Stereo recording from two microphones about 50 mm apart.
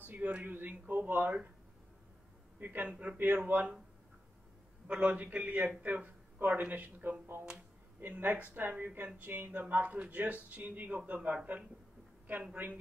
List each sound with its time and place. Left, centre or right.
0.0 s a sound: right
0.3 s speech: right
2.6 s speech: right
4.8 s a man's voice: right
12.6 s speech: right